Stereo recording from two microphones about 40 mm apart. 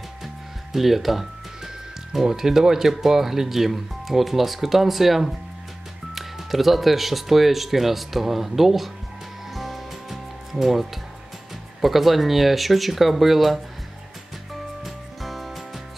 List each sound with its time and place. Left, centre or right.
0.7 s speech: centre
9.5 s music: centre
11.8 s speech: centre
14.8 s music: centre